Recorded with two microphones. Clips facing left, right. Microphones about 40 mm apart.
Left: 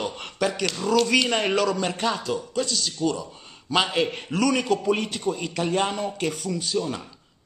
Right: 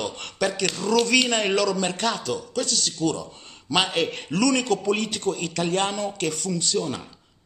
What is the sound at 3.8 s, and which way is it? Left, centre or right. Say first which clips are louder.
A man's voice: even; centre.